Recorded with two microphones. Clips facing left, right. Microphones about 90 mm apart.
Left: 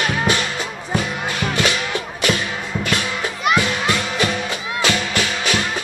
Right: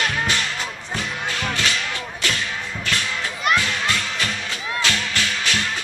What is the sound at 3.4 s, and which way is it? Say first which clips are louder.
Music: left 3 dB; 15° left (ahead or behind).